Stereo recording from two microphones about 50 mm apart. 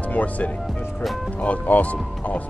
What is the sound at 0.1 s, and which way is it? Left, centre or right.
Speech, left.